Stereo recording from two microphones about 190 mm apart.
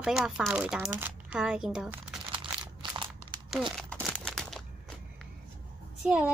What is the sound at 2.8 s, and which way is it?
Crunch, 25° right (ahead or behind).